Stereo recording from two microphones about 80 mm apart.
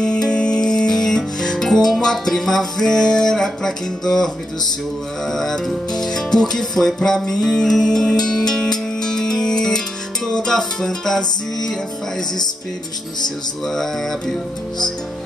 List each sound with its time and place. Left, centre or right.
0.0 s music: centre
5.3 s music: centre
13.7 s music: centre